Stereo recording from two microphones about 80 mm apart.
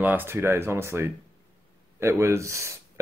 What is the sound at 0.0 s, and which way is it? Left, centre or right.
Speech, right.